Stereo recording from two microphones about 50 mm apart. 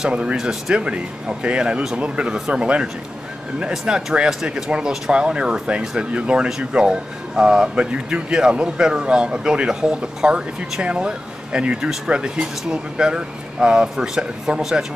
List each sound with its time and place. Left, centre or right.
0.0 s speech: right